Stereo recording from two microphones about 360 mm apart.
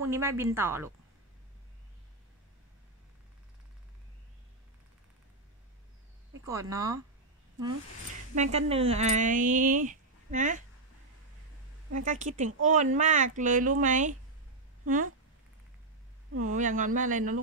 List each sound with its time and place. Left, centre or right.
0.0 s speech: centre
6.4 s speech: centre
8.4 s speech: centre
11.9 s speech: right
16.4 s speech: right